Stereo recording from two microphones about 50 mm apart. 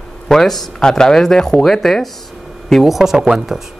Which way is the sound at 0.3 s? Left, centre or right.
Centre.